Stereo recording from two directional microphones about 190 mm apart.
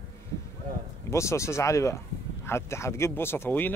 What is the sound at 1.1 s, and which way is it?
Speech, 15° left (ahead or behind).